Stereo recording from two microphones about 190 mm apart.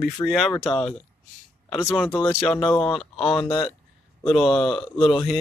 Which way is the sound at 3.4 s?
20° left (ahead or behind).